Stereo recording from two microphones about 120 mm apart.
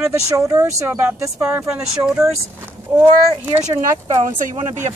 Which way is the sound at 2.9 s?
15° right (ahead or behind).